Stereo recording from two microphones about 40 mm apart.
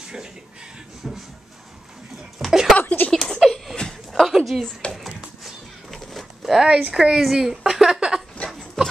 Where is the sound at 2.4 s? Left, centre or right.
Centre.